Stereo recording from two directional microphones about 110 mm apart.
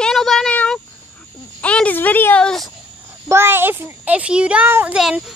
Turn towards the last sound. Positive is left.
turn(degrees=-5)  # may be behind; listen again after turning